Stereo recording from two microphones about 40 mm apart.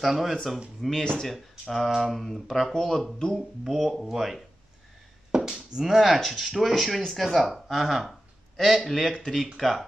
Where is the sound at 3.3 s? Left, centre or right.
Centre.